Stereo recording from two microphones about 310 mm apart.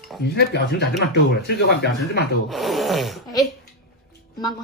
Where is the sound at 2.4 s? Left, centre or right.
Centre.